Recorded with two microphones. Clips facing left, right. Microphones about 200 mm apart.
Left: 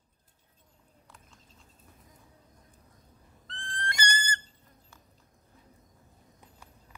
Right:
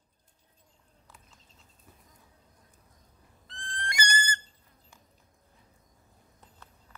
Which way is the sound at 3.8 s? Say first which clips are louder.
Right 1 dB; 10° right (ahead or behind).